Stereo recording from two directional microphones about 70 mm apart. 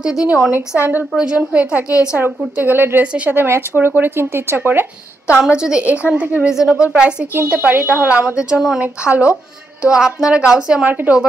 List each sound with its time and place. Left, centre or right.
0.0 s a woman's voice: centre
0.5 s speech: right
1.1 s speech: centre
5.5 s speech: centre
8.5 s a woman's voice: centre
8.8 s speech: centre
10.9 s speech: right